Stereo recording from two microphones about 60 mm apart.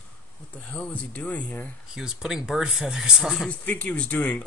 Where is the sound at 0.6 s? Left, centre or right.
Centre.